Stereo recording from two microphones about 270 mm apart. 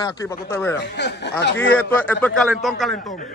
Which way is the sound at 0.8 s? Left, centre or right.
Left.